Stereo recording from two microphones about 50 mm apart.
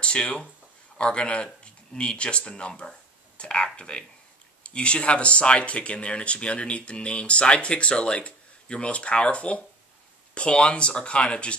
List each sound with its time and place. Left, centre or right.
0.0 s speech: left